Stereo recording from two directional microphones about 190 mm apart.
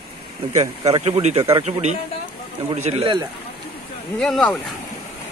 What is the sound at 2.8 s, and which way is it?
Speech, 35° right (ahead or behind).